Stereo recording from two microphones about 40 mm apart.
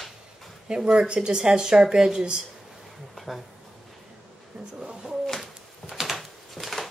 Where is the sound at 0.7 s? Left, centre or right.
Centre.